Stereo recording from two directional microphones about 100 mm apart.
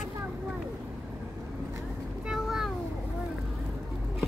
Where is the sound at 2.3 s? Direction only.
5° right (ahead or behind).